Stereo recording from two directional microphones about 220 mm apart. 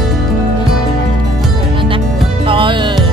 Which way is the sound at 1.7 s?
25° right (ahead or behind).